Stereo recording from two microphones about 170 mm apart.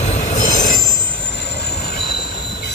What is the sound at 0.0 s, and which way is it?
Train wheels squealing, 45° left (ahead or behind).